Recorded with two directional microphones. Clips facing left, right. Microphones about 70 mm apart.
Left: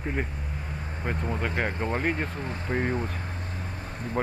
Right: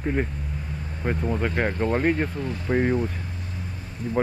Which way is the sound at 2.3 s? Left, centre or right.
Left.